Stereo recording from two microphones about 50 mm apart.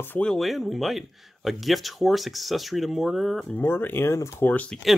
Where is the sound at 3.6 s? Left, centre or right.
Left.